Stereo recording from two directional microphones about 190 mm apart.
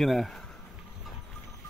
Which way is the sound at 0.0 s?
Centre (ahead or behind).